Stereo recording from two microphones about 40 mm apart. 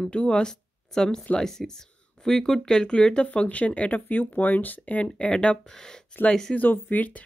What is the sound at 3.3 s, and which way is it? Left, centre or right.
Speech, left.